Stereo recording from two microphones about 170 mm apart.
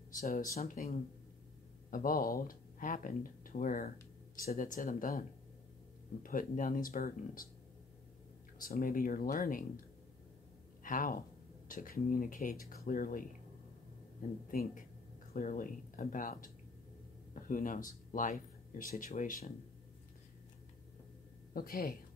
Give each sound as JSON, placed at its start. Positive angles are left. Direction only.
{"t": 0.2, "sound": "speech", "side_deg": 55}
{"t": 6.2, "sound": "speech", "side_deg": 55}
{"t": 8.5, "sound": "speech", "side_deg": 55}
{"t": 10.8, "sound": "speech", "side_deg": 50}
{"t": 14.5, "sound": "speech", "side_deg": 55}
{"t": 21.5, "sound": "speech", "side_deg": 60}